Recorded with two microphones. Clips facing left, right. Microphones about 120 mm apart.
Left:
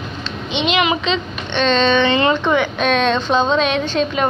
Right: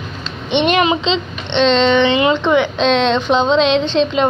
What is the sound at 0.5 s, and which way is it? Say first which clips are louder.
Speech: right 5 dB; 55° right (ahead or behind).